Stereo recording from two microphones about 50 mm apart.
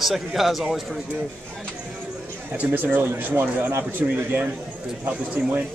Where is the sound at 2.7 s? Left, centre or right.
Right.